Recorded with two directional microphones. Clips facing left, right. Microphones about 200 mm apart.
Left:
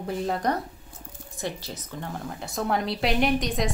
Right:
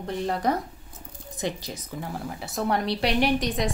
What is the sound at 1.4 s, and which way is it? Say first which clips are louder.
A woman's voice: right 2 dB; 15° right (ahead or behind).